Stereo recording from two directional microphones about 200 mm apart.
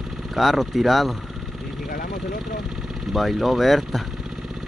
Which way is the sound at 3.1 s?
Centre (ahead or behind).